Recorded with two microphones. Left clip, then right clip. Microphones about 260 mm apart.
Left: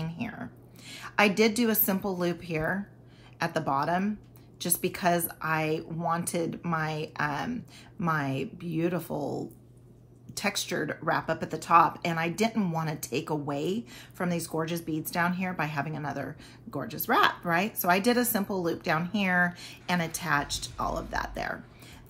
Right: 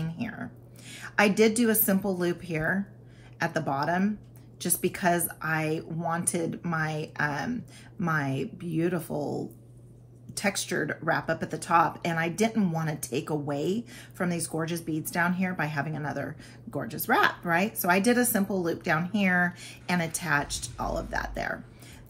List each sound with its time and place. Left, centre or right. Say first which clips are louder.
0.0 s a sound: right 1 dB; centre
1.9 s speech: right 2 dB; centre
10.3 s speech: right 1 dB; centre